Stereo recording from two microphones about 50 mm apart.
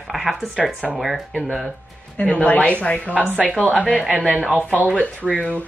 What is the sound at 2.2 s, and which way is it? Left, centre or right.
Speech, left.